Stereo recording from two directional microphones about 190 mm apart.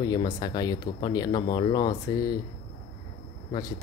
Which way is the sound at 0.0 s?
20° left (ahead or behind).